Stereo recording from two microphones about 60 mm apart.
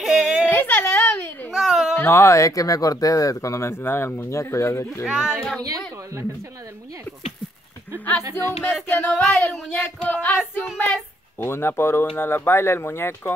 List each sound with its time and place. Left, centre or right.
0.0 s whimper: centre
0.5 s whimper: left
1.5 s a sound: centre
2.0 s speech: left
3.8 s speech: left
5.0 s a child's voice: centre
8.2 s speech: right
9.0 s speech: left